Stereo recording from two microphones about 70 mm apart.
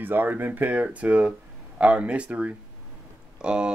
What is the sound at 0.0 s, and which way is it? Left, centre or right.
Speech, right.